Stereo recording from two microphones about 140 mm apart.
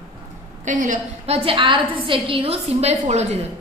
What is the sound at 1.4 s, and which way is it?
A woman's voice, 40° right (ahead or behind).